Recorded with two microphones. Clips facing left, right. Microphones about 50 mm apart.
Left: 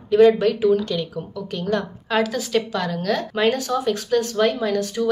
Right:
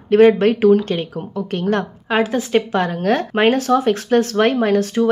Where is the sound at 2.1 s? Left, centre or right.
Right.